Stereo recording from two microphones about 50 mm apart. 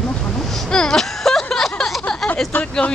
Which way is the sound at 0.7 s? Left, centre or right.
Centre.